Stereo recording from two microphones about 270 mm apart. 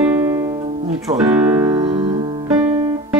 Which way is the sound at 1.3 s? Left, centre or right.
Centre.